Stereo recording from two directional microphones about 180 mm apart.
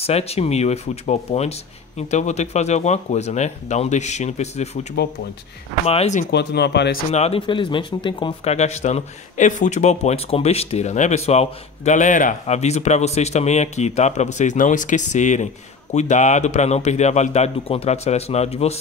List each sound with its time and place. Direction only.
0.0 s speech: 35° left (ahead or behind)
5.9 s speech: 35° left (ahead or behind)
6.3 s speech: 70° left (ahead or behind)
7.1 s speech: 35° left (ahead or behind)